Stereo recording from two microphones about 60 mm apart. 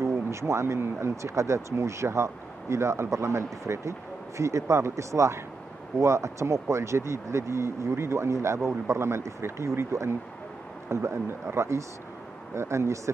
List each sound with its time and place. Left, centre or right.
0.0 s speech: right